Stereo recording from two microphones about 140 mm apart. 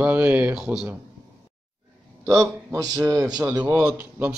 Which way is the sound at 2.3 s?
20° right (ahead or behind).